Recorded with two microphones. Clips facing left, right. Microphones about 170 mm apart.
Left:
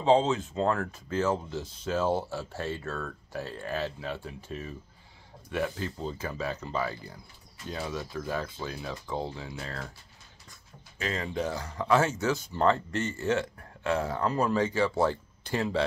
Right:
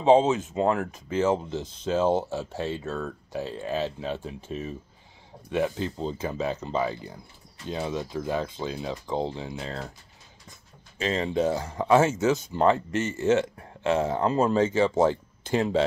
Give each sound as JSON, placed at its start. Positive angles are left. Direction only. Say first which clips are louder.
{"t": 0.0, "sound": "speech", "louder": "right 4 dB", "side_deg": -20}
{"t": 11.0, "sound": "speech", "louder": "right 6 dB", "side_deg": -25}